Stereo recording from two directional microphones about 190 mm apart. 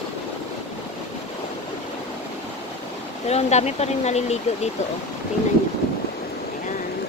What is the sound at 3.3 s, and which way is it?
Speech, 35° left (ahead or behind).